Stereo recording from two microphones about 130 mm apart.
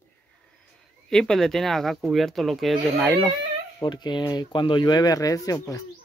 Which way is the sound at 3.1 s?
25° left (ahead or behind).